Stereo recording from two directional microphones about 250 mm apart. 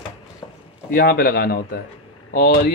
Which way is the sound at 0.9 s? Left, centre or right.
Left.